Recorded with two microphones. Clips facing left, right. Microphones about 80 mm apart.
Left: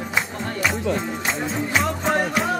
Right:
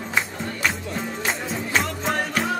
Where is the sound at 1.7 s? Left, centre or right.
Centre.